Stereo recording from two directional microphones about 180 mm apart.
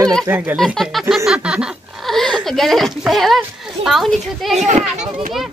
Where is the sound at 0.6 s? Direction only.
Centre (ahead or behind).